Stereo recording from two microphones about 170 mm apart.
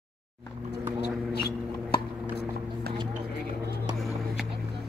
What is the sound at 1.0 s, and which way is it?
Mouse, 70° left (ahead or behind).